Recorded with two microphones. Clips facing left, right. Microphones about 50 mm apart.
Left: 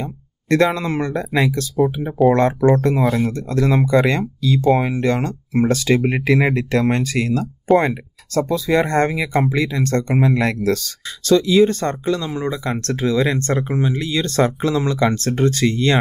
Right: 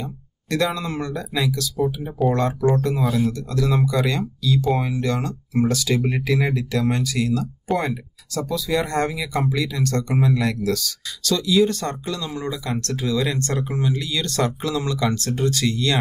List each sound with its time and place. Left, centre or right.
0.0 s speech: left